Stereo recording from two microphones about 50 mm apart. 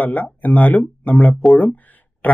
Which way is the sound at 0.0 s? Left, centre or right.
Left.